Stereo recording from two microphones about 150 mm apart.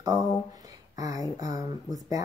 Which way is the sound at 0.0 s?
20° right (ahead or behind).